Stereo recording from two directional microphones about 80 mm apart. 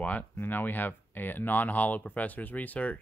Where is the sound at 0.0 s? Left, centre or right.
Left.